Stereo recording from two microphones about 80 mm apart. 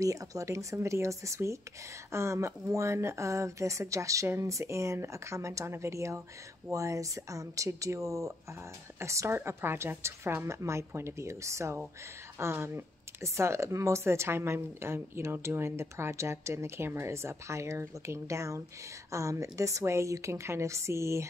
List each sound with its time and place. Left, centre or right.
0.0 s speech: right